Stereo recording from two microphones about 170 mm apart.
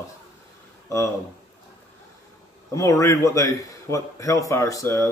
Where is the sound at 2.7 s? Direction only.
20° left (ahead or behind).